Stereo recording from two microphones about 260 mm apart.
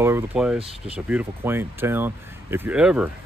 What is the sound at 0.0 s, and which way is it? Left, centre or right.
Speech, centre.